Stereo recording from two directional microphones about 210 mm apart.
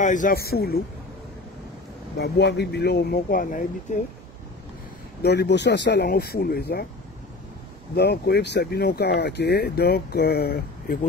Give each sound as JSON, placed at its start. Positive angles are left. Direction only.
{"t": 0.0, "sound": "speech", "side_deg": 40}
{"t": 2.1, "sound": "speech", "side_deg": 50}
{"t": 5.2, "sound": "speech", "side_deg": 50}
{"t": 7.9, "sound": "speech", "side_deg": 50}